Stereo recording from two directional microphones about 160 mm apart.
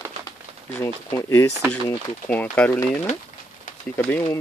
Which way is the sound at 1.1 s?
15° left (ahead or behind).